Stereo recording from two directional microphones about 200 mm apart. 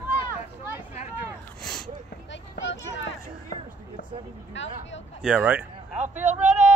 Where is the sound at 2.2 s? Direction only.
65° left (ahead or behind).